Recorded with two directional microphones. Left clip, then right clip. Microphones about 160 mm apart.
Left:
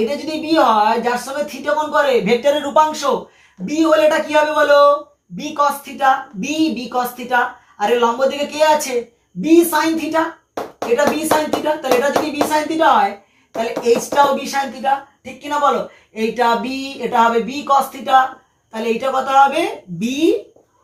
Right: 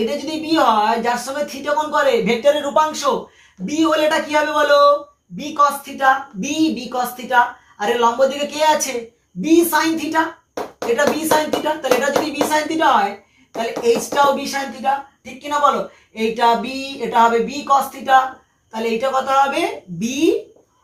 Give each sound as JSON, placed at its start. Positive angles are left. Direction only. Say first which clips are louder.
{"t": 0.2, "sound": "a woman's voice", "louder": "left 2 dB", "side_deg": 15}
{"t": 14.1, "sound": "a woman's voice", "louder": "left 2 dB", "side_deg": 10}
{"t": 16.3, "sound": "a woman's voice", "louder": "even", "side_deg": 15}